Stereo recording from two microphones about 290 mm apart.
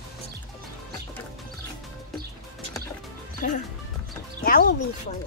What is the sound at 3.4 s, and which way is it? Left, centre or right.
Speech, left.